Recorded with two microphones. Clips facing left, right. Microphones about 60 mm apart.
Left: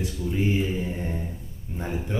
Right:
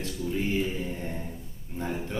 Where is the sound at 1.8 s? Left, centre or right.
Centre.